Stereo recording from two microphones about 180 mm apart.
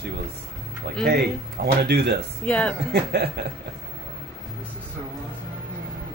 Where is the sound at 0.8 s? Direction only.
65° right (ahead or behind).